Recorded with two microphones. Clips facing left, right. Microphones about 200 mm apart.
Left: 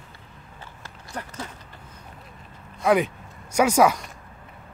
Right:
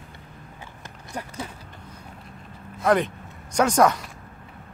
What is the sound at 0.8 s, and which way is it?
Run, 15° right (ahead or behind).